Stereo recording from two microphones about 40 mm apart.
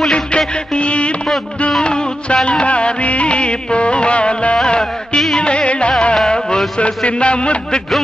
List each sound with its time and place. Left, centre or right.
0.7 s a sound: left
1.8 s music: left
7.1 s a man's voice: left